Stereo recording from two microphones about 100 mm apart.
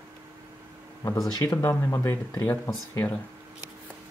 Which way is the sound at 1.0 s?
35° left (ahead or behind).